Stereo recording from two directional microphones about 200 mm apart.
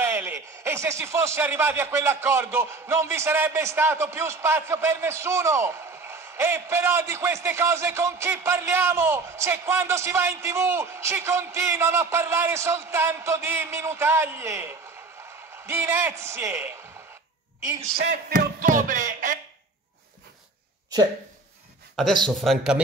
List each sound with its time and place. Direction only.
0.0 s a man's voice: 10° right (ahead or behind)
17.9 s a sound: 45° right (ahead or behind)
21.9 s a man's voice: centre (ahead or behind)